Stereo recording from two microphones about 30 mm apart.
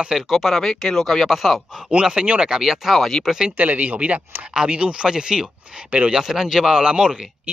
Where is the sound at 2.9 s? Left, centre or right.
Centre.